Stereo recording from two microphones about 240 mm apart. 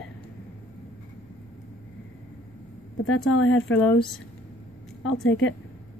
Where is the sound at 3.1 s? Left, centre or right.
Left.